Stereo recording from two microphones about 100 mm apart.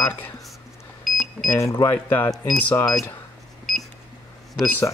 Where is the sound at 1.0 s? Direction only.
Centre (ahead or behind).